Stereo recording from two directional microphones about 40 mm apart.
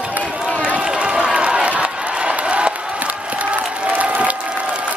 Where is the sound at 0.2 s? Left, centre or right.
Right.